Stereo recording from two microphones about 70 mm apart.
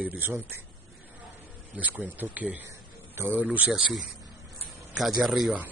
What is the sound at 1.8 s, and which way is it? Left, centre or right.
Speech, right.